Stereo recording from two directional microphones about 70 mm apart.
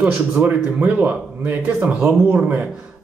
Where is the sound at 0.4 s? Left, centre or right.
Right.